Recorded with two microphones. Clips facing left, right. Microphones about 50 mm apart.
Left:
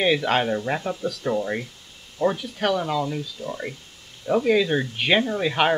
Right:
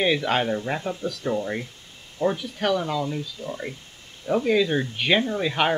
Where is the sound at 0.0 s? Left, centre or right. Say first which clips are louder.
Left 1 dB; centre.